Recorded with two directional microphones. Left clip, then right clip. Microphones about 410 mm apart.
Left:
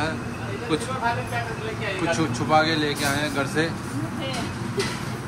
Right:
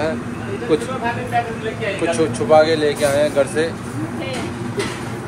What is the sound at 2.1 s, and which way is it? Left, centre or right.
Speech, centre.